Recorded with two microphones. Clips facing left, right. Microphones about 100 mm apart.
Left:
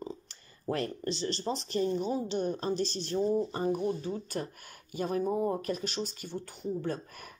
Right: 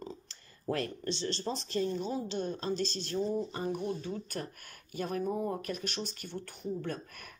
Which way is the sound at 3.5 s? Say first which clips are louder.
Left 4 dB; 30° left (ahead or behind).